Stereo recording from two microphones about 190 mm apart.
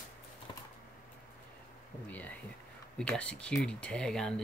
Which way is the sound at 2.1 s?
10° left (ahead or behind).